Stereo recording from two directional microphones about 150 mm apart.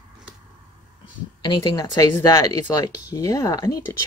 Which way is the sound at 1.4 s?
30° left (ahead or behind).